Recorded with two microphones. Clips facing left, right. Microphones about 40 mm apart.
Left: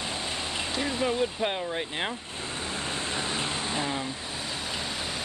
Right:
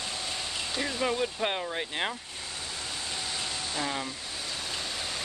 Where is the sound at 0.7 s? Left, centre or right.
Centre.